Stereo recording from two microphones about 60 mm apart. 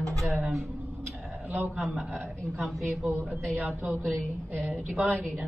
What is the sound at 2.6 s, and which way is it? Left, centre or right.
Speech, centre.